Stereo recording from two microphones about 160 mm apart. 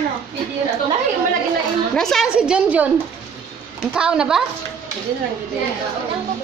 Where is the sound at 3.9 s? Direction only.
5° right (ahead or behind).